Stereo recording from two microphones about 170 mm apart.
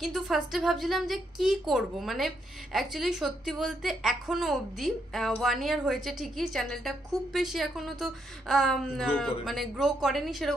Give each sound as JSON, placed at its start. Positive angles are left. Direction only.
{"t": 0.0, "sound": "a woman's voice", "side_deg": 0}